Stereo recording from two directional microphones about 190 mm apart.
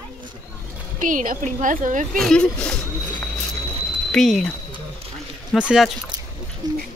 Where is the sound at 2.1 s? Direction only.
5° left (ahead or behind).